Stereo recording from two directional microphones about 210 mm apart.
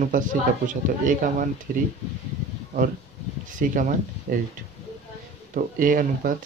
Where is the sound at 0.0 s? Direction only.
40° right (ahead or behind).